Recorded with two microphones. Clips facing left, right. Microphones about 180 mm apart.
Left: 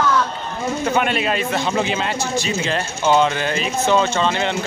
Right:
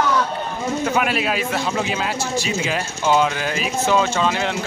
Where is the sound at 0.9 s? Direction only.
5° right (ahead or behind).